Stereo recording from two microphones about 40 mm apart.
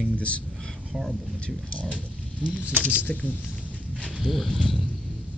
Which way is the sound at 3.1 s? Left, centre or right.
Left.